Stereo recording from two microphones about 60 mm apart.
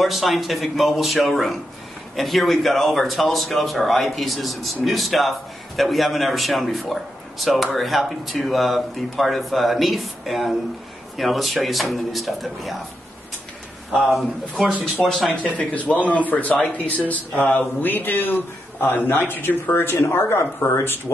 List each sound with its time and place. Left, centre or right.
0.0 s a man's voice: centre
14.1 s a man's voice: centre
15.0 s speech: right
15.3 s a man's voice: left